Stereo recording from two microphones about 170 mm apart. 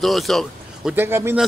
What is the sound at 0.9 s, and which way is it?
Speech, 15° right (ahead or behind).